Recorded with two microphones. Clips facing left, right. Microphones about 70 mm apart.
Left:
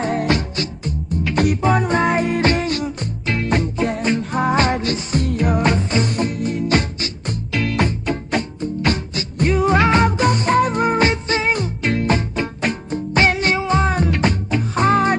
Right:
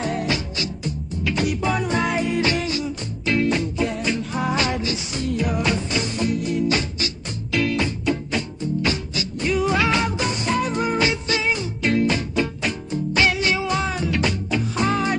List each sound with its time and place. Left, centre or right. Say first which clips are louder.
0.0 s music: left 5 dB; left